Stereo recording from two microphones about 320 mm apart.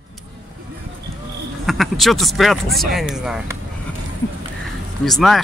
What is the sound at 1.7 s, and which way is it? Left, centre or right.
Speech, centre.